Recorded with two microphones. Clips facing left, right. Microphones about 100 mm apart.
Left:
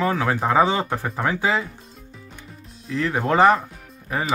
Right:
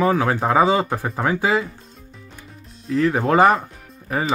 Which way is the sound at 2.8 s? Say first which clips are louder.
Right 4 dB; centre (ahead or behind).